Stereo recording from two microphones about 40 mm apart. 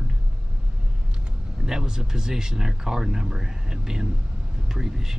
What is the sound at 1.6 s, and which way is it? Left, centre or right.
Speech, centre.